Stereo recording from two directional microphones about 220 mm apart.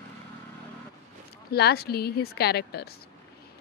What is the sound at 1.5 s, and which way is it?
Speech, 45° left (ahead or behind).